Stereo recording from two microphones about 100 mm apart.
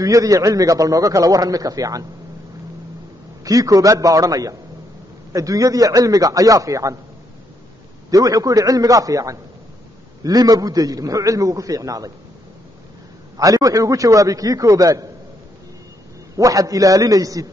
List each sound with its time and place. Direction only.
0.0 s a man's voice: 35° right (ahead or behind)
3.4 s a man's voice: 35° right (ahead or behind)
8.1 s a man's voice: 35° right (ahead or behind)
13.4 s a man's voice: 35° right (ahead or behind)
16.3 s a man's voice: 35° right (ahead or behind)